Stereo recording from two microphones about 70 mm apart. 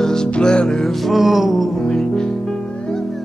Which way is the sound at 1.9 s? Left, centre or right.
Centre.